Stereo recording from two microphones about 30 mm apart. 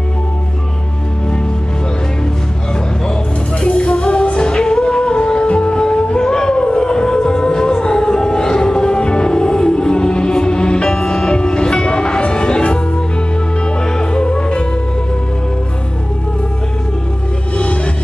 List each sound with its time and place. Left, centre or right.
3.6 s music: left
13.8 s music: left
14.2 s music: left